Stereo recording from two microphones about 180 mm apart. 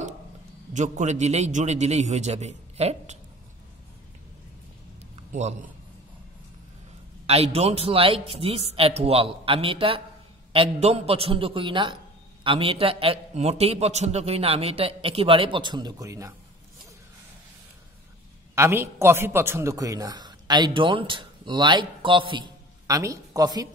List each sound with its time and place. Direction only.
0.7 s a man's voice: 40° right (ahead or behind)
5.3 s a man's voice: 40° right (ahead or behind)
7.2 s a man's voice: 35° right (ahead or behind); by 16.3 s 15° right (ahead or behind)
18.5 s a man's voice: 15° right (ahead or behind)